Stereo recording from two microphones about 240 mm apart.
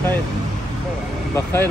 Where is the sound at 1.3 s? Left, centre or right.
Centre.